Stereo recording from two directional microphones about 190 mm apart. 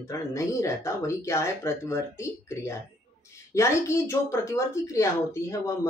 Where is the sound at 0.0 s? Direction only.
15° left (ahead or behind).